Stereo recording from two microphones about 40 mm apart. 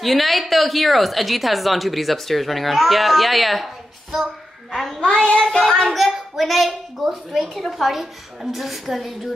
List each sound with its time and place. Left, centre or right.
0.0 s a woman's voice: centre
5.4 s child singing: centre
5.9 s a woman's voice: centre